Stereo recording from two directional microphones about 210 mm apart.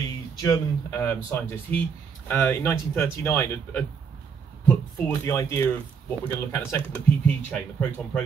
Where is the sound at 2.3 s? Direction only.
10° left (ahead or behind).